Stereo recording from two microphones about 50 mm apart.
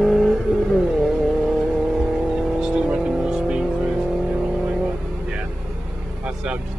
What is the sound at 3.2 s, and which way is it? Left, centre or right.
Vehicle, centre.